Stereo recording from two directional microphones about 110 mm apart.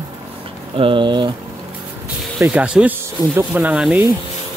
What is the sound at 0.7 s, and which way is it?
Speech, 50° right (ahead or behind).